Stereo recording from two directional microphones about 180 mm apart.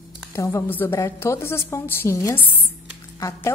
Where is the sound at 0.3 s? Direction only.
15° left (ahead or behind).